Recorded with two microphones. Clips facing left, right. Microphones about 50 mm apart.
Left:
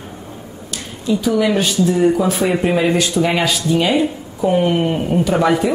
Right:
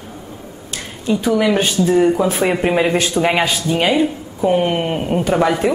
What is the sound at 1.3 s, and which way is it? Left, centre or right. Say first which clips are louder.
Speech: right 2 dB; centre.